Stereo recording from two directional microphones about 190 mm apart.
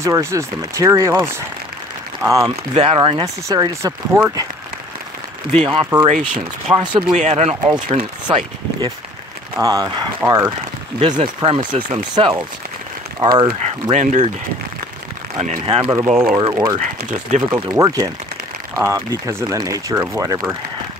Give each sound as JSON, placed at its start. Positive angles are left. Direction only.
{"t": 0.0, "sound": "speech", "side_deg": -15}
{"t": 2.7, "sound": "speech", "side_deg": -30}
{"t": 5.7, "sound": "speech", "side_deg": -25}
{"t": 6.0, "sound": "speech", "side_deg": -40}
{"t": 6.8, "sound": "speech", "side_deg": -25}
{"t": 7.2, "sound": "speech", "side_deg": -35}
{"t": 9.6, "sound": "speech", "side_deg": -20}
{"t": 13.9, "sound": "speech", "side_deg": -35}
{"t": 15.3, "sound": "speech", "side_deg": -35}
{"t": 16.0, "sound": "speech", "side_deg": -15}
{"t": 16.3, "sound": "speech", "side_deg": -25}
{"t": 17.0, "sound": "speech", "side_deg": -45}
{"t": 17.5, "sound": "speech", "side_deg": -20}